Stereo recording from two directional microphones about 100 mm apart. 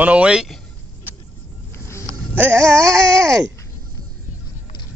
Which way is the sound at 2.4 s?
25° right (ahead or behind).